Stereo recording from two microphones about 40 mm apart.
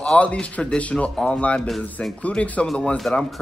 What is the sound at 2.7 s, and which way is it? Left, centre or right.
Speech, left.